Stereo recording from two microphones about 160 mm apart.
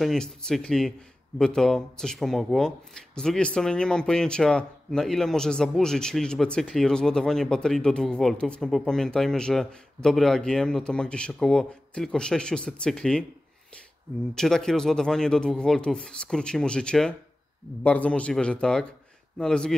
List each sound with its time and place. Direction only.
0.0 s speech: 5° left (ahead or behind)
14.3 s a man's voice: 5° left (ahead or behind)